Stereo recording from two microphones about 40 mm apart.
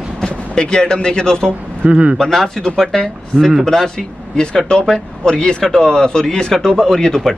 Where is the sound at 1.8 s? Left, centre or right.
Right.